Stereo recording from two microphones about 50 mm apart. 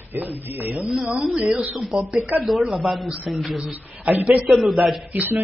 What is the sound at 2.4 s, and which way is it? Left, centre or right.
Speech, centre.